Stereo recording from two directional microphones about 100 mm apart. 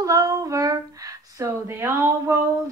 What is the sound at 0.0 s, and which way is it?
Speech, 35° right (ahead or behind).